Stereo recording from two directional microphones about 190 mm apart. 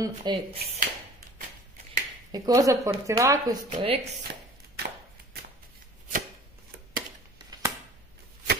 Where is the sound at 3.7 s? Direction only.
30° right (ahead or behind).